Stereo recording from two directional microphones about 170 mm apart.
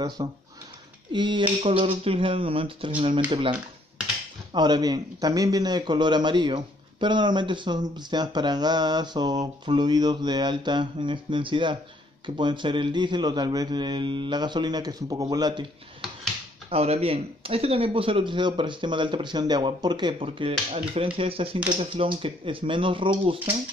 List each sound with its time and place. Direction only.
0.2 s a man's voice: 25° right (ahead or behind)
4.6 s a man's voice: 25° right (ahead or behind)
16.7 s speech: 35° right (ahead or behind)